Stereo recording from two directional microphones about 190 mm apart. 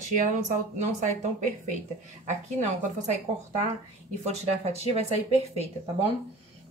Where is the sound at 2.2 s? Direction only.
40° right (ahead or behind).